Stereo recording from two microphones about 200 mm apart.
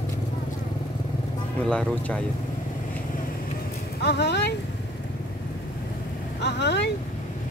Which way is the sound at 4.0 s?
55° left (ahead or behind).